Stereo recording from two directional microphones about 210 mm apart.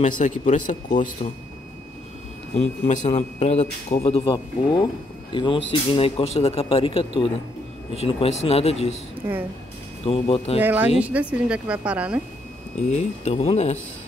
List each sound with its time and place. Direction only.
0.2 s speech: 35° left (ahead or behind)
2.5 s a man's voice: 35° left (ahead or behind)
9.2 s speech: 15° right (ahead or behind)
10.0 s a man's voice: 25° left (ahead or behind)
10.6 s a woman's voice: 10° right (ahead or behind)
12.8 s speech: 30° left (ahead or behind)